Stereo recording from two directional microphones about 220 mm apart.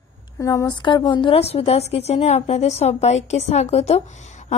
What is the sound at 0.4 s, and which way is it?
A woman's voice, 15° left (ahead or behind).